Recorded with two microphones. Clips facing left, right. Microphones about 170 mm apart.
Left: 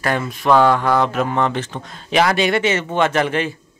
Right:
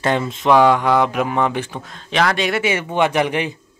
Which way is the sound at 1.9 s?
5° left (ahead or behind).